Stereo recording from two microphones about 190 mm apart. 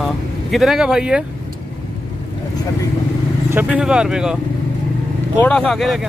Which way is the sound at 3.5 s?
5° right (ahead or behind).